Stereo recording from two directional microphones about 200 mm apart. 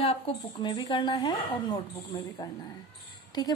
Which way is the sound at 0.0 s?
25° left (ahead or behind).